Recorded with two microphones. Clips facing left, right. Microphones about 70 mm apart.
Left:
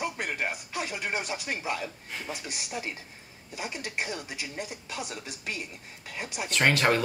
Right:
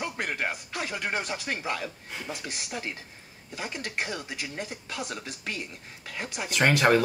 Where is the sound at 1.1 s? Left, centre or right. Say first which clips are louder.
Right 1 dB; right.